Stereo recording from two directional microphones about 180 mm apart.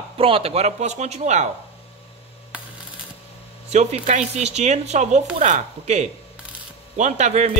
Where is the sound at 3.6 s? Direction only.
40° right (ahead or behind).